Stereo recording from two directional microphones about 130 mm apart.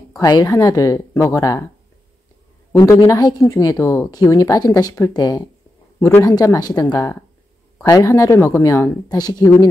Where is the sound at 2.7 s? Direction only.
25° left (ahead or behind).